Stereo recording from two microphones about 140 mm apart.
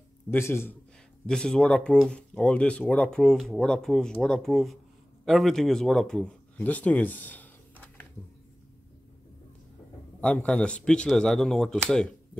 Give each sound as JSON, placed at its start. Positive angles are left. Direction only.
{"t": 0.3, "sound": "a man's voice", "side_deg": 15}
{"t": 1.2, "sound": "speech", "side_deg": 5}
{"t": 10.2, "sound": "speech", "side_deg": 5}